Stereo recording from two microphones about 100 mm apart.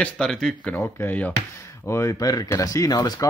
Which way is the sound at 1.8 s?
30° left (ahead or behind).